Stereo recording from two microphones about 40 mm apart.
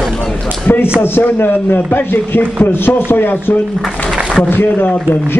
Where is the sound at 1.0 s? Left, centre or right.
Left.